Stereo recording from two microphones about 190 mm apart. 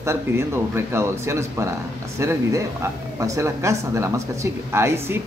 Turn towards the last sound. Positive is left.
turn(degrees=-15)  # may be behind; listen again after turning